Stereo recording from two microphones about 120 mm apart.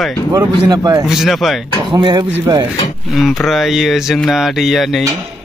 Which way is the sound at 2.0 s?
40° right (ahead or behind).